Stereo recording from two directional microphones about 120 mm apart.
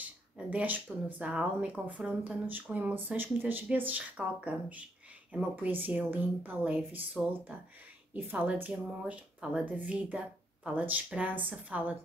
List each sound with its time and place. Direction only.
0.5 s speech: 15° right (ahead or behind)